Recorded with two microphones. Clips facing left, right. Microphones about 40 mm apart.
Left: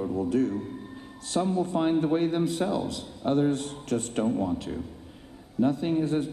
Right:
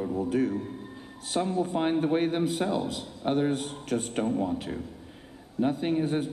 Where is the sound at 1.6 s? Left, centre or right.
Right.